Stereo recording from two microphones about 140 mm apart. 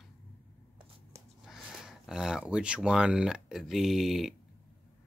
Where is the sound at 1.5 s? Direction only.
5° right (ahead or behind).